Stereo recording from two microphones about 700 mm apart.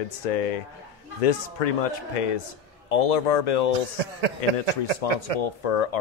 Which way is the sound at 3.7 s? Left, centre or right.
Right.